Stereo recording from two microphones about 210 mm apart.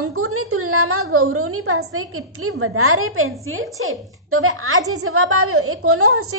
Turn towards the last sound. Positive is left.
turn(degrees=-90)